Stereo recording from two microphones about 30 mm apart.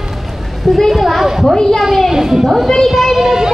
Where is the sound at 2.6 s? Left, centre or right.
Centre.